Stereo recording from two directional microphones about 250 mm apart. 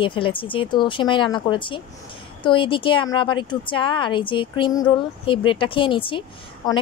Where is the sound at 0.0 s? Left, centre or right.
Left.